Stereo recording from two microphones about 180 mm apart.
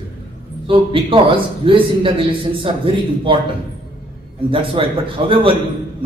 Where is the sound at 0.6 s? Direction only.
30° right (ahead or behind).